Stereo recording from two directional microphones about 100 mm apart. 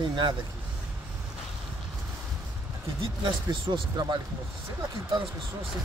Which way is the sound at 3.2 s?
50° right (ahead or behind).